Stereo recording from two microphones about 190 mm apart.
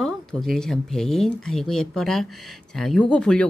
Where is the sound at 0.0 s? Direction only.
Centre (ahead or behind).